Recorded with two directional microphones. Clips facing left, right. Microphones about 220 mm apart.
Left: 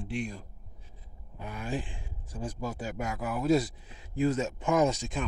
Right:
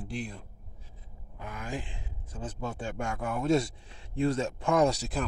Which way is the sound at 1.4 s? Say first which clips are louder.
Left 3 dB; 15° left (ahead or behind).